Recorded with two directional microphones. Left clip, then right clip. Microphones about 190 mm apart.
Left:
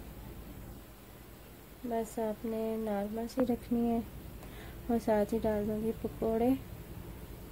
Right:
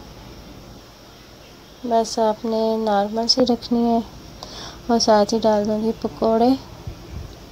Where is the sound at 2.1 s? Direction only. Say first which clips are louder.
Right 16 dB; 15° right (ahead or behind).